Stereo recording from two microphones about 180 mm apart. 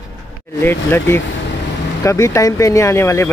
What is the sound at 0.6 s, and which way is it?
Speech, 15° left (ahead or behind).